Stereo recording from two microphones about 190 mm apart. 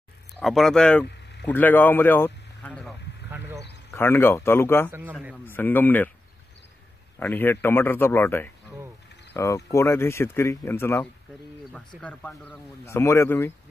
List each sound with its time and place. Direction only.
0.4 s speech: centre (ahead or behind)
3.3 s a sound: 10° right (ahead or behind)
3.9 s speech: 10° left (ahead or behind)
7.2 s speech: 10° left (ahead or behind)